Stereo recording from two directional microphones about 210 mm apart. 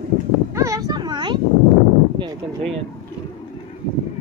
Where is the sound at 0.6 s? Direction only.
15° right (ahead or behind).